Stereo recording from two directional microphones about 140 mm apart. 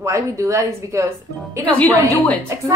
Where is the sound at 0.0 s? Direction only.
20° right (ahead or behind).